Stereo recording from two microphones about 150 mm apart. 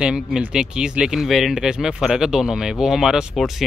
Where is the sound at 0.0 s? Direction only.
5° right (ahead or behind).